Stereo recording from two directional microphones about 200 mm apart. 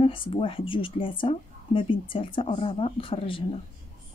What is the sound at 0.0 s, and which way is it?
A woman's voice, 25° left (ahead or behind).